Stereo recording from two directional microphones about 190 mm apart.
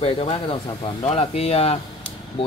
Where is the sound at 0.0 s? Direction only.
30° left (ahead or behind).